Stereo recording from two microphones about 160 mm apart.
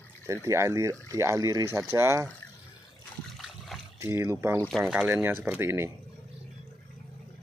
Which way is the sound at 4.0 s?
15° right (ahead or behind).